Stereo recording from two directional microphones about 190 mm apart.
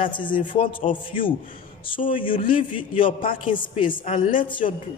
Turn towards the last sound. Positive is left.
turn(degrees=25)  # may be behind; listen again after turning